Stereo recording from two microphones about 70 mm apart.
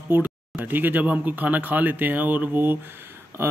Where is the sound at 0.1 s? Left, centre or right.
Right.